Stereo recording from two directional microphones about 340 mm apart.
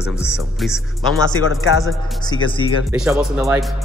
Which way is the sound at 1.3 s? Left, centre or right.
Left.